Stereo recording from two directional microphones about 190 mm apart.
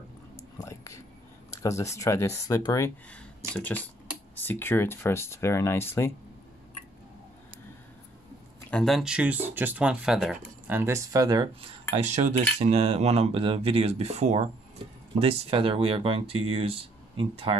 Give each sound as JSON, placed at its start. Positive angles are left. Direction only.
{"t": 0.7, "sound": "a sound", "side_deg": 15}
{"t": 1.5, "sound": "speech", "side_deg": 15}
{"t": 8.6, "sound": "speech", "side_deg": 5}
{"t": 10.8, "sound": "speech", "side_deg": -15}
{"t": 11.9, "sound": "speech", "side_deg": -35}